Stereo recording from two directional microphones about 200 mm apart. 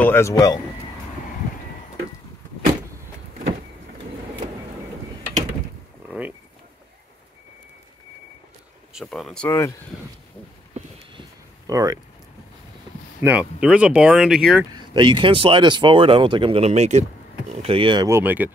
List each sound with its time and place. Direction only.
0.0 s speech: 10° left (ahead or behind)
6.0 s a sound: 5° right (ahead or behind)
8.9 s speech: centre (ahead or behind)
11.6 s speech: 20° right (ahead or behind)
13.2 s speech: 5° right (ahead or behind)
14.7 s speech: 20° right (ahead or behind)